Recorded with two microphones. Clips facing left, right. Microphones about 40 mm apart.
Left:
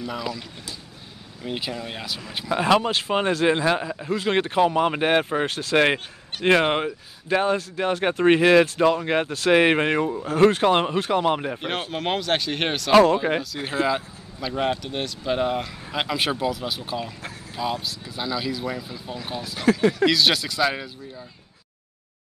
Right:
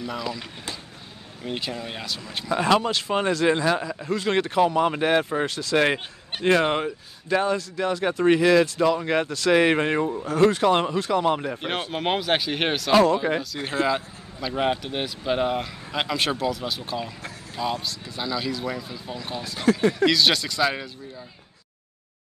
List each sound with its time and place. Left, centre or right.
0.0 s speech: centre
1.4 s speech: centre
3.9 s speech: centre
10.2 s speech: left
11.9 s speech: centre
12.9 s speech: centre
13.4 s speech: centre